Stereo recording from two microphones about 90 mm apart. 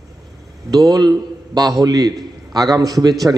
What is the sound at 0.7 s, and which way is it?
A man's voice, 45° right (ahead or behind).